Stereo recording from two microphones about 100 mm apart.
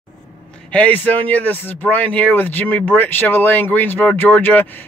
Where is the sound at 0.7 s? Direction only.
15° left (ahead or behind).